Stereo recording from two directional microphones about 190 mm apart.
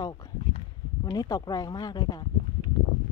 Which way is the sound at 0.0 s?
20° left (ahead or behind).